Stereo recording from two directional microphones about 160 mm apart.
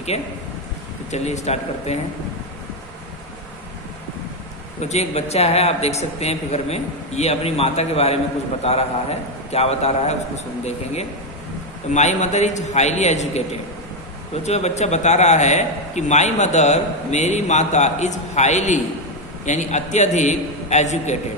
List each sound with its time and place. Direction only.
0.1 s a man's voice: 40° left (ahead or behind)
4.7 s a man's voice: 45° left (ahead or behind)